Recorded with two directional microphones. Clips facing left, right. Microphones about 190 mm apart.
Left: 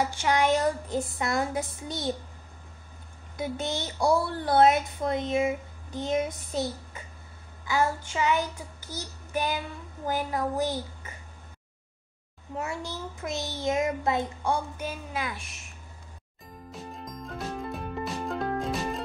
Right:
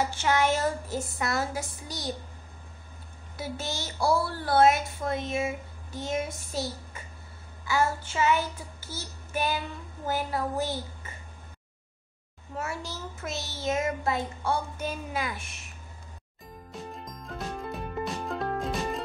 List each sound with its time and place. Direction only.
0.2 s child singing: 15° left (ahead or behind)
1.1 s a woman's voice: 20° left (ahead or behind)
3.3 s a woman's voice: 20° left (ahead or behind)
7.6 s child singing: 15° left (ahead or behind)
12.5 s child singing: 15° left (ahead or behind)
15.1 s a woman's voice: centre (ahead or behind)
16.7 s music: centre (ahead or behind)